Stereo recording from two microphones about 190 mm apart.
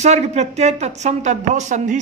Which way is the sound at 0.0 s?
35° right (ahead or behind).